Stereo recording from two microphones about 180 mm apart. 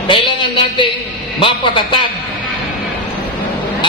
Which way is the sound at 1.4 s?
25° left (ahead or behind).